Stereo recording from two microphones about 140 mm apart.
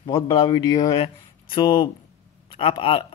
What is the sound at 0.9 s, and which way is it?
A man's voice, 40° left (ahead or behind).